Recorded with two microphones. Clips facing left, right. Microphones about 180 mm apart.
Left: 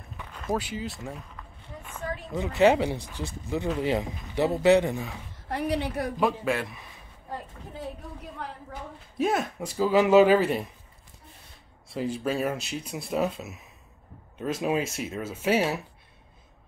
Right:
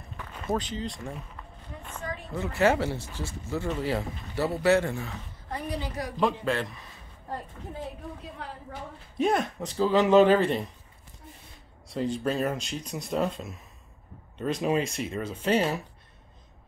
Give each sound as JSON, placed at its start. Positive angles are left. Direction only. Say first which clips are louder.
{"t": 0.4, "sound": "speech", "louder": "even", "side_deg": 5}
{"t": 2.3, "sound": "speech", "louder": "left 3 dB", "side_deg": 15}
{"t": 5.5, "sound": "a woman's voice", "louder": "left 5 dB", "side_deg": 75}
{"t": 6.1, "sound": "speech", "louder": "right 1 dB", "side_deg": 10}
{"t": 9.2, "sound": "speech", "louder": "right 1 dB", "side_deg": 5}
{"t": 11.9, "sound": "speech", "louder": "even", "side_deg": 5}